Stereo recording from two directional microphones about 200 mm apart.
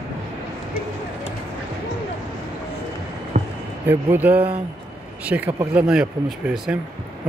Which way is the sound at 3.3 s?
35° right (ahead or behind).